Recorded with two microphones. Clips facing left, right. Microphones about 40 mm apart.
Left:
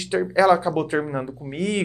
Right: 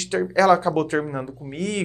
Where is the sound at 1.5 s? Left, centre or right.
Left.